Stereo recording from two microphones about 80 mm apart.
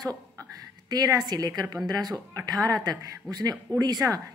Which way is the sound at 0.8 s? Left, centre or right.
Right.